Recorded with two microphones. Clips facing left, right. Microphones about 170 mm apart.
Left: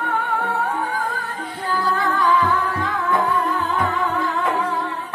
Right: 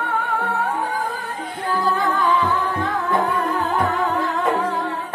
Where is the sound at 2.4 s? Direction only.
30° right (ahead or behind).